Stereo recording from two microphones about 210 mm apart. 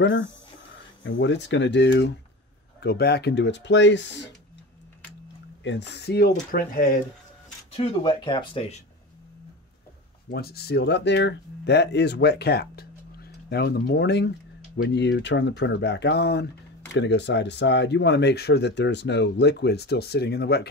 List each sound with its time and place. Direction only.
0.0 s speech: 60° left (ahead or behind)
5.6 s speech: 55° left (ahead or behind)
7.7 s speech: 25° left (ahead or behind)
10.3 s speech: 50° left (ahead or behind)